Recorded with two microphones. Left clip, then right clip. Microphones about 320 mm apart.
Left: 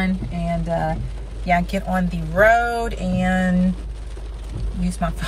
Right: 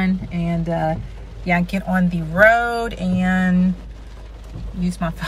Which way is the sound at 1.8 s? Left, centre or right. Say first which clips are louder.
Right 1 dB; centre.